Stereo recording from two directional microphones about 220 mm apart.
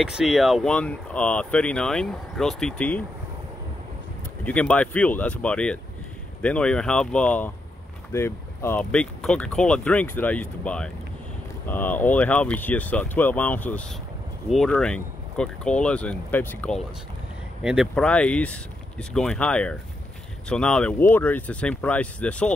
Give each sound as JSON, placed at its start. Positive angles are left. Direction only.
{"t": 0.0, "sound": "speech", "side_deg": 0}
{"t": 4.5, "sound": "speech", "side_deg": 5}